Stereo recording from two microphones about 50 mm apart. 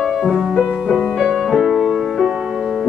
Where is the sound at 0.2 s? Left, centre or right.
Centre.